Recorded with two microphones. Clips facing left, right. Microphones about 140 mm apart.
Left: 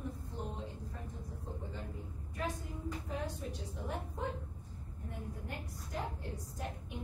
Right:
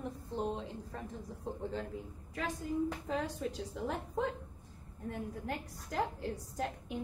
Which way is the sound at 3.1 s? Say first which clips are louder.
Right 5 dB; 90° right.